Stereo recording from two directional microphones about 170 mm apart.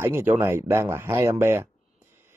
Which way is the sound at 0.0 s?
15° right (ahead or behind).